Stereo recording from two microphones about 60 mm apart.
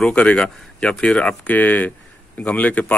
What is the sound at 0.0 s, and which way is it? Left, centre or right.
Speech, centre.